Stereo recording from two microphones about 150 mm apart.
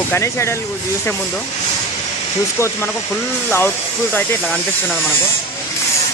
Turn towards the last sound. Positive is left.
turn(degrees=15)  # may be behind; listen again after turning